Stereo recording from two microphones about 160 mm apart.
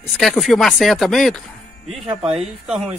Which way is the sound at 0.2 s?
Centre (ahead or behind).